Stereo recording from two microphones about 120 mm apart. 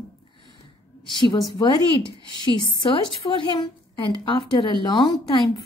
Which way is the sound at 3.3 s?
40° left (ahead or behind).